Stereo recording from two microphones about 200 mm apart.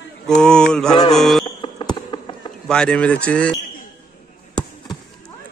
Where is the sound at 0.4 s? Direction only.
5° left (ahead or behind).